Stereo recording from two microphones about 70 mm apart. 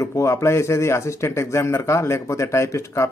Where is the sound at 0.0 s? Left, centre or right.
Left.